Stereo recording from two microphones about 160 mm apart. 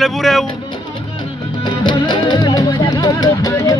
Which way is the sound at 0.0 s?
Centre (ahead or behind).